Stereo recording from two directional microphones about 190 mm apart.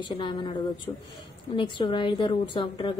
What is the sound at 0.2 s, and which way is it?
A woman's voice, 25° left (ahead or behind).